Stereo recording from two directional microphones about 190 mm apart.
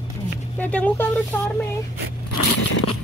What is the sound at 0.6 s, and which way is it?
Speech, 5° left (ahead or behind).